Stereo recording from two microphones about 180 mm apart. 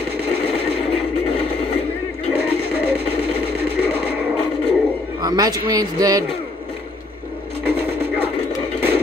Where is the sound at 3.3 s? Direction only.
60° right (ahead or behind).